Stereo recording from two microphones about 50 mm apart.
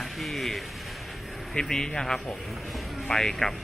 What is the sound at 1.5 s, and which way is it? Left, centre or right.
Speech, centre.